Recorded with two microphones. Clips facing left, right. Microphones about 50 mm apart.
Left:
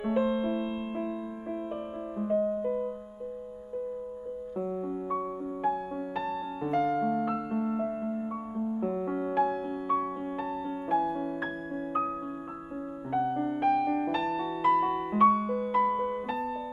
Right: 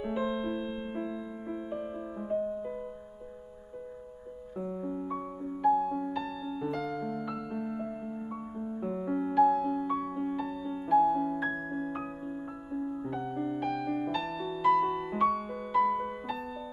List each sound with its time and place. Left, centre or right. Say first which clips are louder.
0.0 s music: left 4 dB; left
4.6 s music: left 2 dB; centre
5.6 s music: right 5 dB; left; by 9.3 s centre
9.3 s music: right 6 dB; left
13.2 s piano: left 7 dB; left
14.2 s music: left 1 dB; centre